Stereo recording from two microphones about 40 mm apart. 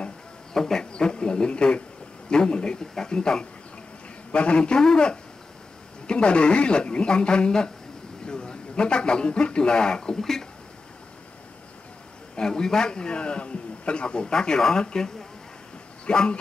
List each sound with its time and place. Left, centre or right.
0.5 s a sound: centre
2.2 s a man's voice: left
12.4 s a man's voice: centre